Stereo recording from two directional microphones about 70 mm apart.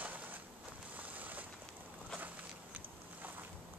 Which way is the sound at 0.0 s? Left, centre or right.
Right.